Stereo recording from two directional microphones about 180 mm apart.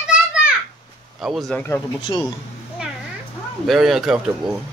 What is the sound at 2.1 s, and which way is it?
Speech, 25° left (ahead or behind).